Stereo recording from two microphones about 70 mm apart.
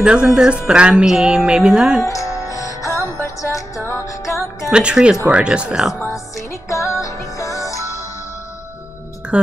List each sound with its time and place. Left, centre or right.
0.0 s music: centre
2.5 s music: left
4.6 s music: centre
6.3 s music: left
9.3 s music: centre